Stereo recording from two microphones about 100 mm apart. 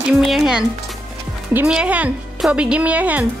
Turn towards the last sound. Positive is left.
turn(degrees=-15)  # may be behind; listen again after turning